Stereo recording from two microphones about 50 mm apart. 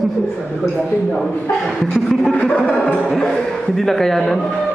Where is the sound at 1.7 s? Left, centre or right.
Centre.